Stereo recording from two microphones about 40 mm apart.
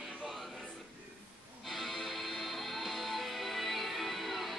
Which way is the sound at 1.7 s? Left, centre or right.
Centre.